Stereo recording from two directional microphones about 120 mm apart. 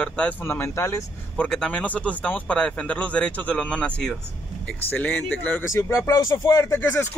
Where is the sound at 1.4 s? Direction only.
10° left (ahead or behind).